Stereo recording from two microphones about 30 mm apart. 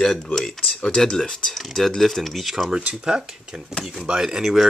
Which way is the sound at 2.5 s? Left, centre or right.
Centre.